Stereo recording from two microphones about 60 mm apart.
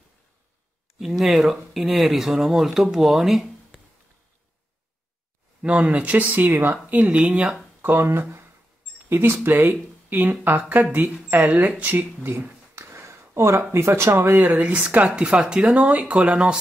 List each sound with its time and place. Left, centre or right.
0.9 s speech: centre
5.6 s speech: centre
7.0 s speech: right
7.8 s speech: right
12.2 s speech: right; by 16.5 s centre